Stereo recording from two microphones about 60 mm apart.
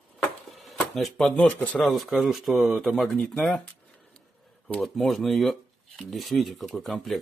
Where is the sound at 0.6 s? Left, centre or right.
Centre.